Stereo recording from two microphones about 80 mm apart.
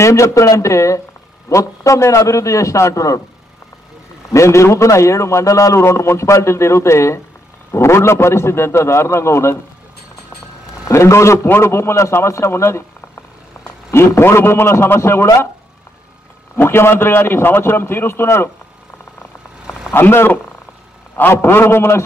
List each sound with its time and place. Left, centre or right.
0.0 s a man's voice: left
4.3 s a man's voice: left
10.9 s a man's voice: left
13.8 s a man's voice: left
16.5 s a man's voice: left
19.9 s a man's voice: left